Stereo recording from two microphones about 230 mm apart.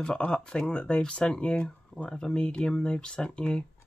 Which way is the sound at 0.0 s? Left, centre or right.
Centre.